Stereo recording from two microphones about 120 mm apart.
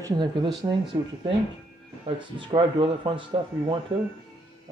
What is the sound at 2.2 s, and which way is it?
Speech, 40° right (ahead or behind).